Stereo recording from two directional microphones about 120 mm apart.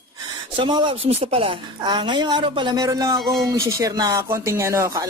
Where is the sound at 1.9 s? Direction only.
40° right (ahead or behind).